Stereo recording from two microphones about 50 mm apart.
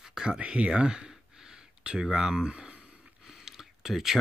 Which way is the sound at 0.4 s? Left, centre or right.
Right.